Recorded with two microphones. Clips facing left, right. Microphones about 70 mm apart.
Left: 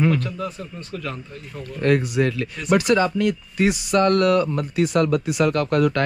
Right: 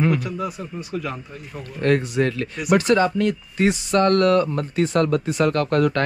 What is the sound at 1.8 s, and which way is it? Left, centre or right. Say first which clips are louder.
Speech: even; right.